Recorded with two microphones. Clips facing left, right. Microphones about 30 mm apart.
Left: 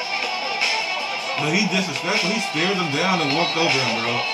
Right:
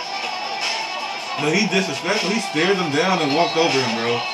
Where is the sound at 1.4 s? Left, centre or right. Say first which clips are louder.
Right 3 dB; centre.